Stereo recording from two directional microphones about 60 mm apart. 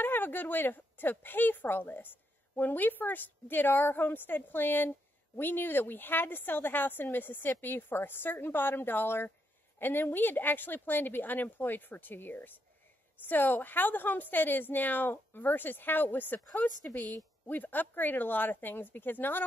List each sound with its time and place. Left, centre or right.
0.0 s speech: left
17.5 s speech: left